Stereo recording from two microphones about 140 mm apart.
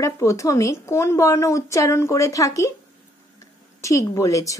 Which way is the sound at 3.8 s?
20° left (ahead or behind).